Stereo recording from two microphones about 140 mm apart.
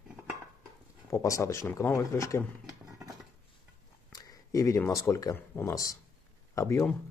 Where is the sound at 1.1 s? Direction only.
20° left (ahead or behind).